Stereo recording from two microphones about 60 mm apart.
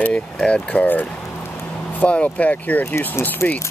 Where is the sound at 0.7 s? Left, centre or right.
Left.